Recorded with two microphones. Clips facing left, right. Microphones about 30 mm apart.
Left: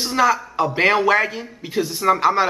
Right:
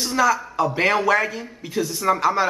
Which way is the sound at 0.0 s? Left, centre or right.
Centre.